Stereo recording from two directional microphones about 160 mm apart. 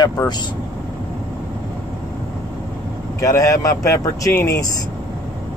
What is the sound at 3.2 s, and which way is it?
Speech, 20° left (ahead or behind).